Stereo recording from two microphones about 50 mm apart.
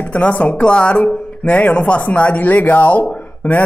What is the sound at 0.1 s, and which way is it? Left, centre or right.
Speech, left.